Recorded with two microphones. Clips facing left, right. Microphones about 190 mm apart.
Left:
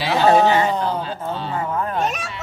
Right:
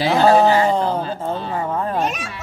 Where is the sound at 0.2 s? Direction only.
35° right (ahead or behind).